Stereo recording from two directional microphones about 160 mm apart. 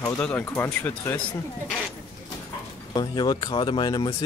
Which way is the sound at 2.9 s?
25° left (ahead or behind).